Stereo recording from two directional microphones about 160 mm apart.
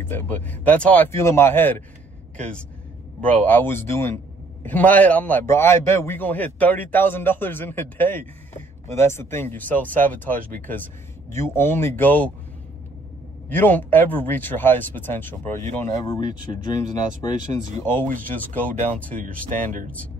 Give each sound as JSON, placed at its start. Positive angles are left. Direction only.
{"t": 0.1, "sound": "a man's voice", "side_deg": 10}
{"t": 13.5, "sound": "a man's voice", "side_deg": 10}
{"t": 17.7, "sound": "a man's voice", "side_deg": 15}